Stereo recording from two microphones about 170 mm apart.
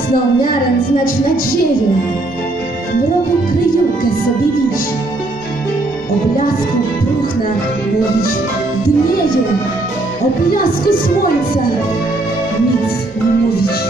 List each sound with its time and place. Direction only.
10.5 s speech: 60° left (ahead or behind)